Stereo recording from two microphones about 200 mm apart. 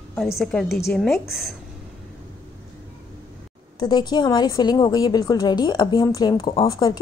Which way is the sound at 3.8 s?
20° left (ahead or behind).